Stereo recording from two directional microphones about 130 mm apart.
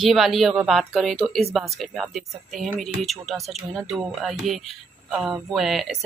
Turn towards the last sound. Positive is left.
turn(degrees=0)  # may be behind; listen again after turning